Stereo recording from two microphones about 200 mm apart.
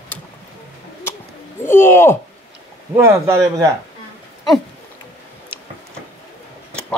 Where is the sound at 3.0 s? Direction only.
15° right (ahead or behind).